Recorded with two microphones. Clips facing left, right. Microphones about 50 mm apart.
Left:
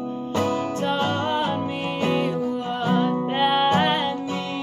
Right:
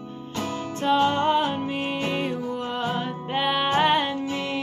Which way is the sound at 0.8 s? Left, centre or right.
Centre.